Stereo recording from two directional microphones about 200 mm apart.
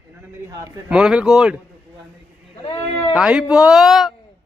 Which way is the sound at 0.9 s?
5° right (ahead or behind).